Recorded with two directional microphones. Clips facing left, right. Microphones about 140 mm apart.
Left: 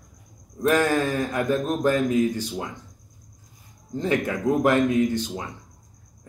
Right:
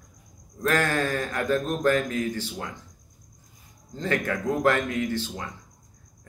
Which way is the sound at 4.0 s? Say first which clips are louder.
Left 3 dB; 15° left (ahead or behind).